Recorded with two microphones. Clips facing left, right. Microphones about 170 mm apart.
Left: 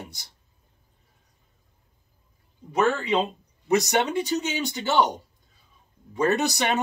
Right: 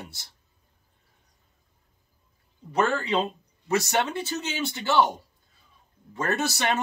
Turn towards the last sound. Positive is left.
turn(degrees=15)  # may be behind; listen again after turning